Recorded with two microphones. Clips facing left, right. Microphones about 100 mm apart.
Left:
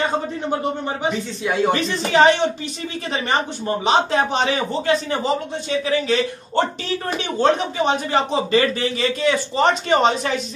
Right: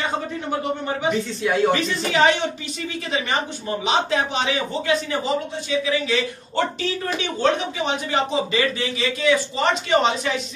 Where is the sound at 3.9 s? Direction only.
45° left (ahead or behind).